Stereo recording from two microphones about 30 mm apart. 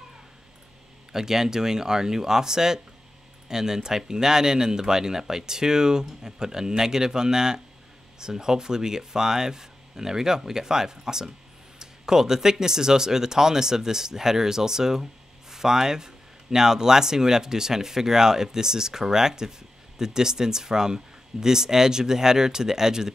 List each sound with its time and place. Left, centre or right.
1.1 s speech: centre